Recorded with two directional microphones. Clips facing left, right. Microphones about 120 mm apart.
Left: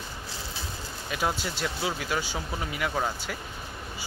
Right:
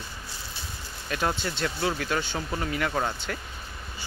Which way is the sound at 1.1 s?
5° left (ahead or behind).